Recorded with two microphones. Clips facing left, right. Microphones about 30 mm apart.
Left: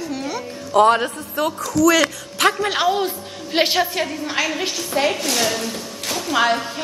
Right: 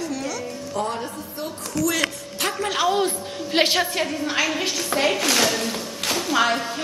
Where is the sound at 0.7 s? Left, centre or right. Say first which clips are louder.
Left 13 dB; left.